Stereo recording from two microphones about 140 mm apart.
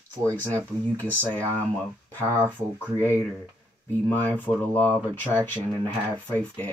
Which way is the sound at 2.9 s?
15° left (ahead or behind).